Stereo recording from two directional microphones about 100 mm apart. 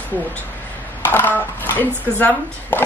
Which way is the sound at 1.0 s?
20° left (ahead or behind).